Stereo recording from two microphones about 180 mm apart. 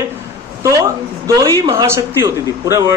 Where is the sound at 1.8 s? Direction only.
15° right (ahead or behind).